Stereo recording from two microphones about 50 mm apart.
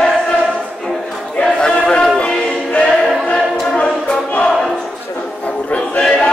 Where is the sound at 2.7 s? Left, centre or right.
Left.